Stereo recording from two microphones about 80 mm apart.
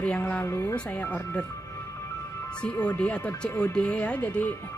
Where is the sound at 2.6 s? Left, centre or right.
Centre.